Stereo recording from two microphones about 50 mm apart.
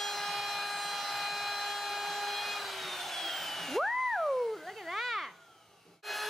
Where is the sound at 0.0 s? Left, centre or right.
Centre.